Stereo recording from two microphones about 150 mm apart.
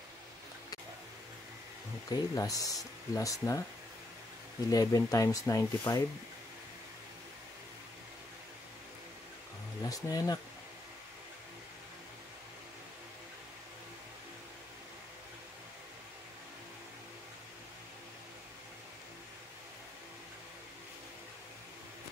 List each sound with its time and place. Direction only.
2.0 s speech: 25° left (ahead or behind)
4.6 s speech: 25° left (ahead or behind)
9.8 s speech: 25° left (ahead or behind)